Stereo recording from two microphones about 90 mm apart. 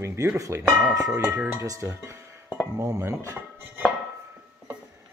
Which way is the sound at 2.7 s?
35° right (ahead or behind).